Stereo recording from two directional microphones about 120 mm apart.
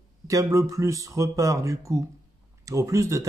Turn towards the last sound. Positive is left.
turn(degrees=-25)  # may be behind; listen again after turning